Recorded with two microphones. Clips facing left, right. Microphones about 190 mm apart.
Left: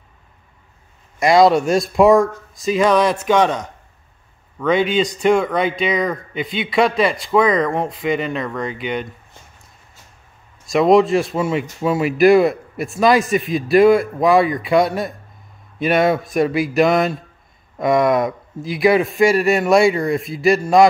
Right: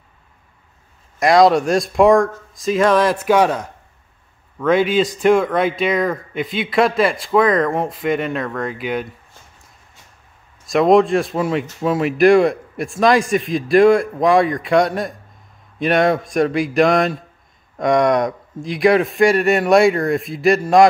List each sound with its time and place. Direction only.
1.2 s speech: centre (ahead or behind)
10.7 s speech: centre (ahead or behind)